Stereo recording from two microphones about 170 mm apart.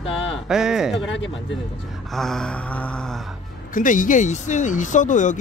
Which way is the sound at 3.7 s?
50° left (ahead or behind).